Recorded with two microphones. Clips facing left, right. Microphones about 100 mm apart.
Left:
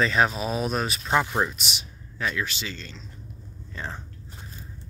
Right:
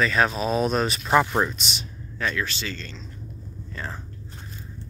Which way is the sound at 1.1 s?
10° right (ahead or behind).